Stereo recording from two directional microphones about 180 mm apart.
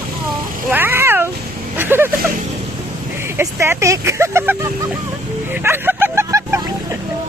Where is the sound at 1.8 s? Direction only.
10° right (ahead or behind).